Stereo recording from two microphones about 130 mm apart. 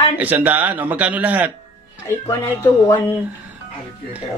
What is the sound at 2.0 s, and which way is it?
Speech, 15° left (ahead or behind).